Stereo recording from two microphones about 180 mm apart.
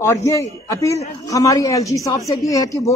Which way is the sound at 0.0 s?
15° left (ahead or behind).